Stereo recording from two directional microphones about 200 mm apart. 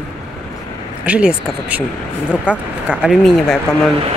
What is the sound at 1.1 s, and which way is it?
Speech, 5° right (ahead or behind).